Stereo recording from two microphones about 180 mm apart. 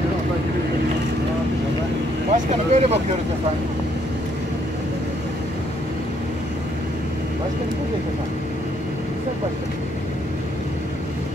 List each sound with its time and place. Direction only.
2.3 s speech: 35° right (ahead or behind)